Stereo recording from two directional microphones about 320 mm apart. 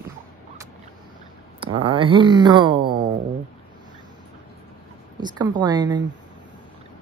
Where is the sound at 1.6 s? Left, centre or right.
Centre.